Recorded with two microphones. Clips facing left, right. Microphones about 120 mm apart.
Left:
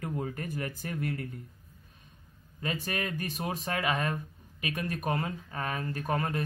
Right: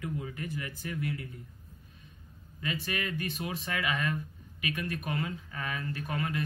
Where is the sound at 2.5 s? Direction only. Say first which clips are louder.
Left 1 dB; 40° left (ahead or behind).